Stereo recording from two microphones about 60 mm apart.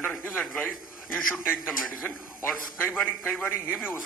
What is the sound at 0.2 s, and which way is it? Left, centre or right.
Speech, left.